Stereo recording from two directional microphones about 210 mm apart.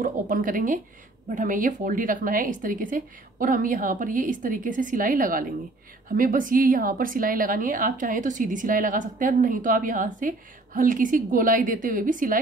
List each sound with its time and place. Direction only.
0.0 s a woman's voice: 40° right (ahead or behind)